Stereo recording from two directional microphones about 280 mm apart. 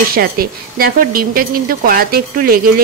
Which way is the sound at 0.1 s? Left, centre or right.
Right.